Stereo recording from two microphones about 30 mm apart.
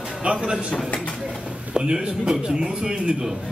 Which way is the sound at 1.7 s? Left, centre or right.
Right.